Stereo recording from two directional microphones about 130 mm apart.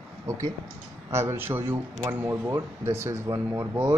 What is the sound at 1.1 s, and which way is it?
Speech, 20° right (ahead or behind).